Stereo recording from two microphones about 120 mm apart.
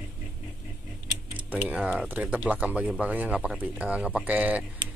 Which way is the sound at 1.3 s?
10° right (ahead or behind).